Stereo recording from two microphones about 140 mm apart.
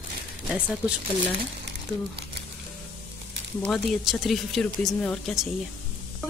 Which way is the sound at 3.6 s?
Centre (ahead or behind).